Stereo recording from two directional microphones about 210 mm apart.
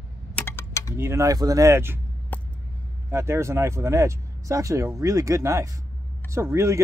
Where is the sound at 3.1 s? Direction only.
15° right (ahead or behind).